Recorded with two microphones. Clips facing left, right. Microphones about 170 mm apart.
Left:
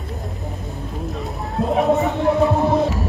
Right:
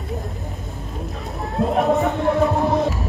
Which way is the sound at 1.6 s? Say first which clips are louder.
Left 1 dB; centre (ahead or behind).